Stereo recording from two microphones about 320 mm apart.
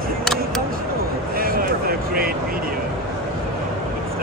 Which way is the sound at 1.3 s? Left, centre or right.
Right.